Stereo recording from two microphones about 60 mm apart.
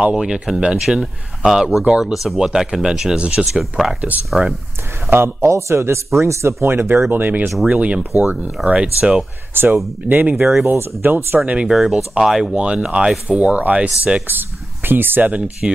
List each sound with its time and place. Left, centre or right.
0.0 s speech: centre
3.2 s speech: centre
3.5 s speech: centre
5.1 s speech: right
7.6 s speech: centre
9.5 s speech: right
10.3 s speech: centre
10.7 s speech: right
11.3 s speech: right
11.6 s speech: centre
14.9 s speech: right
15.6 s speech: centre